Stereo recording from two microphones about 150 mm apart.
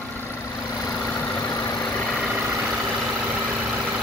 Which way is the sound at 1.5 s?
20° left (ahead or behind).